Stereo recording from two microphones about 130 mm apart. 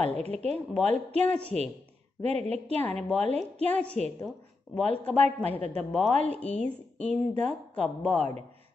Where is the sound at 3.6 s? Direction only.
10° left (ahead or behind).